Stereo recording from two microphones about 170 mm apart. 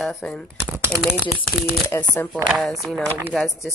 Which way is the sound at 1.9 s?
15° left (ahead or behind).